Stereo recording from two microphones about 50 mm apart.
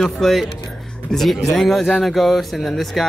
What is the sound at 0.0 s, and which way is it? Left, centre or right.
Speech, centre.